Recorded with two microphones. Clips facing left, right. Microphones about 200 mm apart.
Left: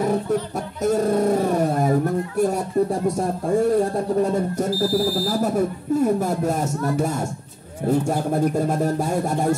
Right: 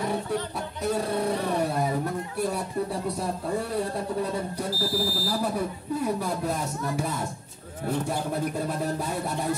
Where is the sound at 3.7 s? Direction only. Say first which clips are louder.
Left 9 dB; 45° left (ahead or behind).